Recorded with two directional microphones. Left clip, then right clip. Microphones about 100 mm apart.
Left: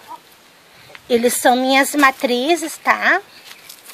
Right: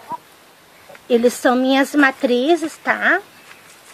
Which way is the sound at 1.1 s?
15° right (ahead or behind).